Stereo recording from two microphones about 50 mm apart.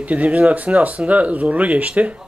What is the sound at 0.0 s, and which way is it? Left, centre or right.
Speech, right.